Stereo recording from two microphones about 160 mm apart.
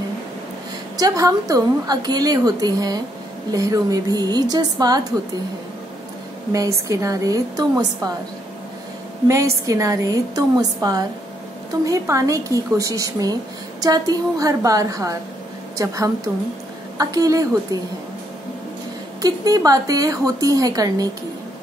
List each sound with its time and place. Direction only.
0.9 s a woman's voice: 20° right (ahead or behind)
6.5 s a woman's voice: 20° right (ahead or behind)
9.3 s a woman's voice: 20° right (ahead or behind)
19.2 s a woman's voice: 20° right (ahead or behind)